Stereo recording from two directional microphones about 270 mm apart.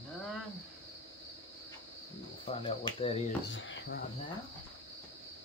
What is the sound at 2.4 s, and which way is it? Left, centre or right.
Speech, centre.